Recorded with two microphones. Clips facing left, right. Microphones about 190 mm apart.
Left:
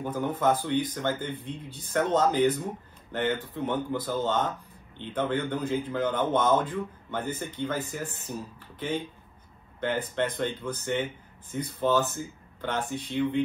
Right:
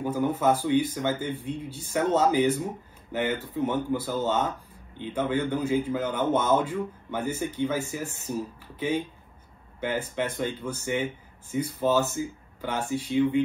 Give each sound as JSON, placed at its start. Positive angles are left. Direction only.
{"t": 0.0, "sound": "a man's voice", "side_deg": -10}
{"t": 10.1, "sound": "a man's voice", "side_deg": -10}